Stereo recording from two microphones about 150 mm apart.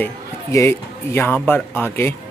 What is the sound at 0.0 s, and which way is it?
A man's voice, 20° left (ahead or behind).